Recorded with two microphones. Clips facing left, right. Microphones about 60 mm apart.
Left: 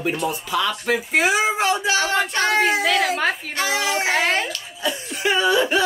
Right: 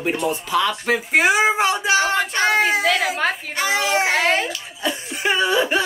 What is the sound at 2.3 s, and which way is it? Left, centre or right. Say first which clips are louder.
Speech: right 1 dB; centre.